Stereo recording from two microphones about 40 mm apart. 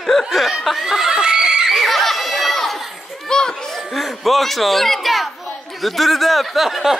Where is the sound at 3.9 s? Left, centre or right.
Centre.